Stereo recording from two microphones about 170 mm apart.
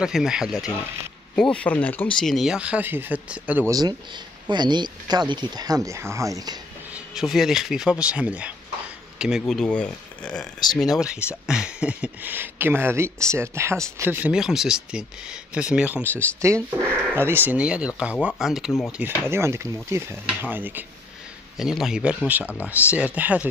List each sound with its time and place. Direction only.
0.0 s speech: 5° right (ahead or behind)
4.5 s speech: 25° right (ahead or behind)
6.9 s speech: centre (ahead or behind)